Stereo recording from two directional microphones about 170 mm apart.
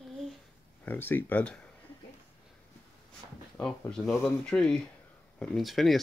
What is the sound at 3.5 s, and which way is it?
Speech, 5° left (ahead or behind).